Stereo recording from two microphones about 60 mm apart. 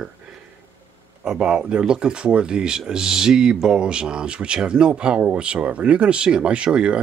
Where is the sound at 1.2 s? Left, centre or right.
Centre.